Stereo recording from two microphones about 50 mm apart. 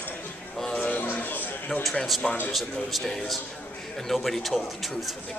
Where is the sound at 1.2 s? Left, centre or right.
Left.